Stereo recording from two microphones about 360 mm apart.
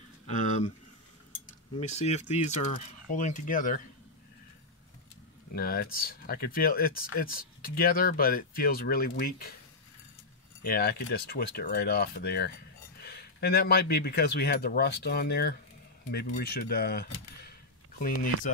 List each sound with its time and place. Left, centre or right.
1.8 s speech: centre
5.5 s speech: left
10.6 s speech: left